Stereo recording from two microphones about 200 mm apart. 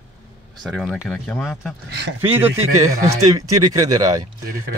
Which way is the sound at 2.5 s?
90° right.